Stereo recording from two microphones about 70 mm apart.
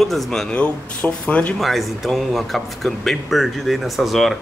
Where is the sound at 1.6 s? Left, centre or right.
Centre.